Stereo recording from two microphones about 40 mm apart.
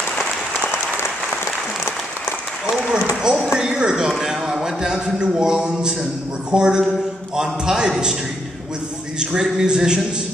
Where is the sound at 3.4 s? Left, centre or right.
Centre.